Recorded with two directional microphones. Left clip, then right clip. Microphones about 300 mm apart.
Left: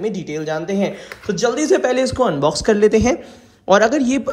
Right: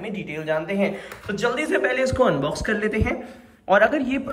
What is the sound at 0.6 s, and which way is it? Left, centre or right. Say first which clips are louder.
A man's voice: left 3 dB; left.